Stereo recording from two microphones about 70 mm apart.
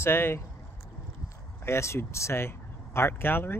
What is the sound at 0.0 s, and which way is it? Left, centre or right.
Speech, left.